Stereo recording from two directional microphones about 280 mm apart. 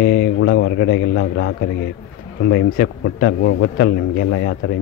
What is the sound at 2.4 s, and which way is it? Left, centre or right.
A man's voice, left.